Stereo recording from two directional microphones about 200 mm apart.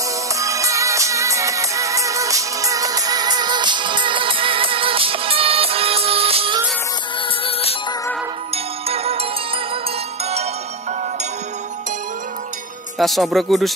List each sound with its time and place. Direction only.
0.4 s music: 15° right (ahead or behind)
8.8 s music: 30° right (ahead or behind)
13.0 s speech: centre (ahead or behind)